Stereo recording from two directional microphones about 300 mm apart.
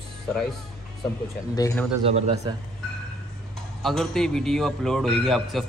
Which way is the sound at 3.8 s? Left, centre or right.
Centre.